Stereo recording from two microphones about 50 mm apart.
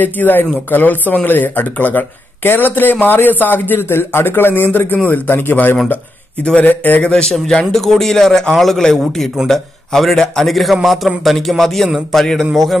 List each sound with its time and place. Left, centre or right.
0.0 s speech: left
7.0 s speech: left
7.7 s a man's voice: centre